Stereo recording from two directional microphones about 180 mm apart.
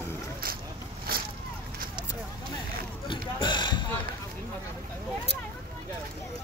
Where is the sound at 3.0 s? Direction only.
25° left (ahead or behind).